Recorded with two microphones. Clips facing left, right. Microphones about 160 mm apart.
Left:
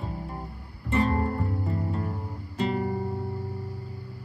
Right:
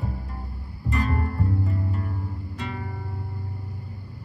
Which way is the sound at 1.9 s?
35° left (ahead or behind).